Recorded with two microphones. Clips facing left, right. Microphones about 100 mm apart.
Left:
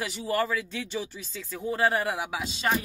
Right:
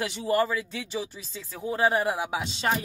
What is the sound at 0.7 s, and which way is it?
Speech, 10° right (ahead or behind).